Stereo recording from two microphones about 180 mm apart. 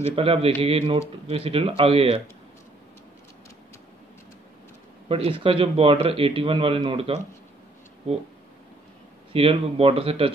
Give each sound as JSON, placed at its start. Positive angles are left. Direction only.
{"t": 0.1, "sound": "speech", "side_deg": -30}
{"t": 5.0, "sound": "speech", "side_deg": -30}
{"t": 9.3, "sound": "speech", "side_deg": -30}